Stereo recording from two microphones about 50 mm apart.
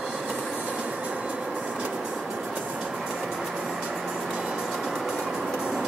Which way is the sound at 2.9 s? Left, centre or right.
Centre.